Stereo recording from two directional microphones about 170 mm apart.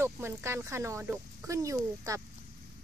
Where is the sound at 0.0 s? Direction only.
15° right (ahead or behind).